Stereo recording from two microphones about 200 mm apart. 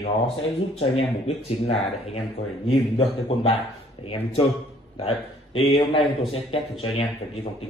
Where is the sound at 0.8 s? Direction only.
30° left (ahead or behind).